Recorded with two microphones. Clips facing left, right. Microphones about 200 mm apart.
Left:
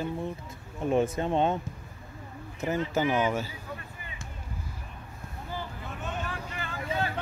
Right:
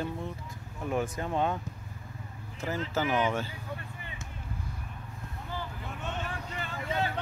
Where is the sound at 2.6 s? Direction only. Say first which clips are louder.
Left 4 dB; 20° left (ahead or behind).